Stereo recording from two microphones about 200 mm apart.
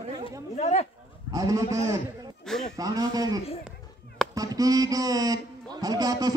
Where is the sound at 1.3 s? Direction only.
15° right (ahead or behind).